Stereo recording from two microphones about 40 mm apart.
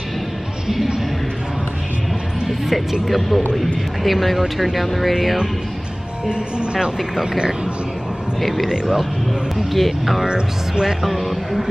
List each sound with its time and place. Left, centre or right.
2.4 s speech: centre
6.2 s speech: right
8.4 s speech: centre
8.6 s speech: centre
9.7 s speech: centre
10.2 s speech: right
10.9 s speech: centre